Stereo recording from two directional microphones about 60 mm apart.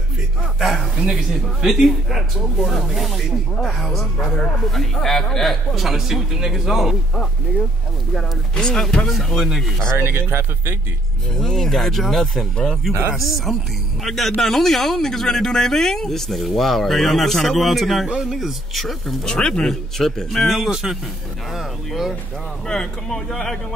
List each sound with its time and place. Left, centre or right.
0.6 s speech: centre
8.5 s speech: centre
9.1 s speech: centre
9.9 s speech: right
11.3 s speech: centre
13.5 s speech: centre
19.2 s speech: centre
22.7 s speech: centre